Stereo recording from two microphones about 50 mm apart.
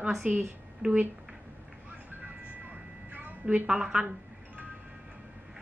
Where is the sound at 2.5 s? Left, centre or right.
Right.